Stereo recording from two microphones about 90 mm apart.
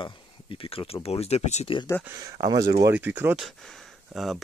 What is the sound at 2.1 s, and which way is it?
Speech, 45° right (ahead or behind).